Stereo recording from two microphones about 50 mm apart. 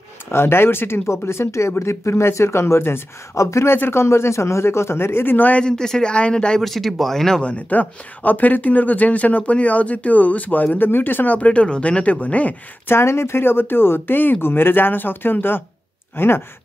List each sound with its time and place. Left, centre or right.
0.3 s speech: left
1.0 s speech: left
3.3 s speech: left
3.7 s speech: left
5.5 s speech: centre
6.6 s speech: centre
7.4 s speech: left
11.3 s speech: left
12.8 s speech: left